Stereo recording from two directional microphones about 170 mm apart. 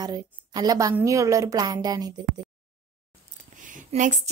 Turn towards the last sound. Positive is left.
turn(degrees=-50)  # may be behind; listen again after turning